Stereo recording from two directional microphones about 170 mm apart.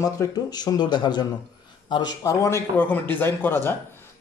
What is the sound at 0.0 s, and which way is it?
Speech, 20° left (ahead or behind).